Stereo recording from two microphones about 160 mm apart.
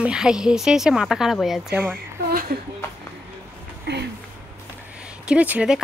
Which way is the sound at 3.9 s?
90° right.